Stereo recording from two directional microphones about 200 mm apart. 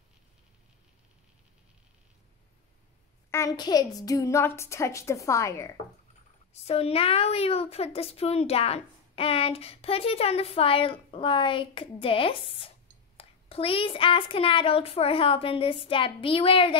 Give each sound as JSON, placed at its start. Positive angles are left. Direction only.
{"t": 3.3, "sound": "a woman's voice", "side_deg": 15}
{"t": 6.5, "sound": "a woman's voice", "side_deg": 30}